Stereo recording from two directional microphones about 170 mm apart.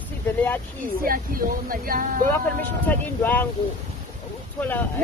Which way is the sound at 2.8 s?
10° left (ahead or behind).